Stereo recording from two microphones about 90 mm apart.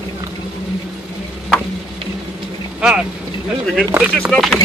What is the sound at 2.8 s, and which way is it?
Speech, 10° right (ahead or behind).